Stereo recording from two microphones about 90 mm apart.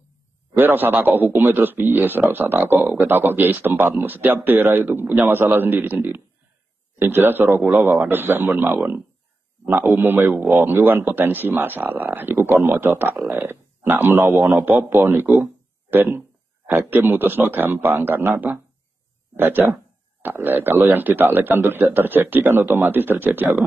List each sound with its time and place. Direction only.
0.6 s a man's voice: 20° right (ahead or behind)